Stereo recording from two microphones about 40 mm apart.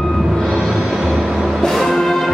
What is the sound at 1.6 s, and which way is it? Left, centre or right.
Music, centre.